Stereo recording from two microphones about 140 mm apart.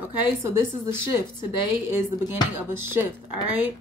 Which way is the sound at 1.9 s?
15° right (ahead or behind).